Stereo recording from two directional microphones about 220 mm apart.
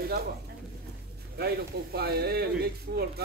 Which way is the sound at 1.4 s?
45° right (ahead or behind).